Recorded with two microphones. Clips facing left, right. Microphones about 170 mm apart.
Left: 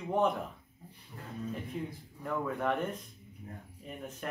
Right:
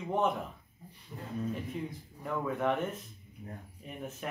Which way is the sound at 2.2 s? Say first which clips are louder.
Right 1 dB; centre (ahead or behind).